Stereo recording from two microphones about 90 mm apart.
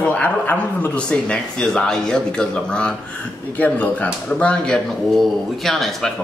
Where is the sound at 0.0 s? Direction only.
15° left (ahead or behind).